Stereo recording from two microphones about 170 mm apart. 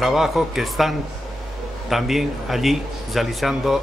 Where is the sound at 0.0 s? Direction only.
Centre (ahead or behind).